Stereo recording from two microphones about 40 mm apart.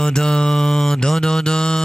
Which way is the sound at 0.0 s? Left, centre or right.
Centre.